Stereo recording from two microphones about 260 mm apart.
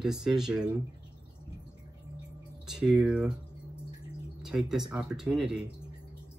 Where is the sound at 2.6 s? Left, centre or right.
Centre.